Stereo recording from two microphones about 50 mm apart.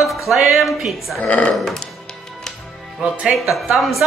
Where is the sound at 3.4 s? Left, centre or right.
Centre.